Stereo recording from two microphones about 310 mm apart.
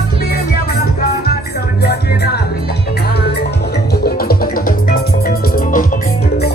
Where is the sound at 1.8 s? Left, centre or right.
Left.